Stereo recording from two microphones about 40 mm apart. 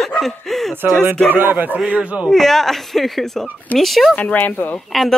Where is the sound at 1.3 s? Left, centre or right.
Right.